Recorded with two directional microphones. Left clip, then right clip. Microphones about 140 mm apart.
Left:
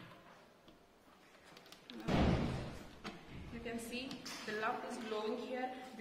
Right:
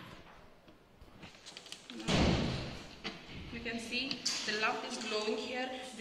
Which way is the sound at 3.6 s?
10° left (ahead or behind).